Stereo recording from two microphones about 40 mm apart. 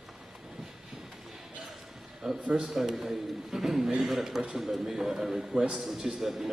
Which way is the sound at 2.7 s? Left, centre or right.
Centre.